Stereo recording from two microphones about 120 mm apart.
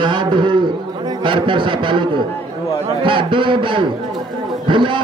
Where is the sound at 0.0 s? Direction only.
40° right (ahead or behind).